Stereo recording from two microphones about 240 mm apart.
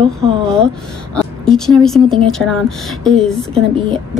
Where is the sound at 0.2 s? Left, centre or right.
Right.